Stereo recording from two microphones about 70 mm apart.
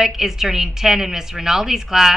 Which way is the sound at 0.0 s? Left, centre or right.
Centre.